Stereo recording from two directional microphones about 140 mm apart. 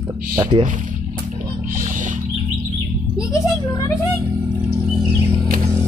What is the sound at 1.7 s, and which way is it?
Rodents, 70° right (ahead or behind).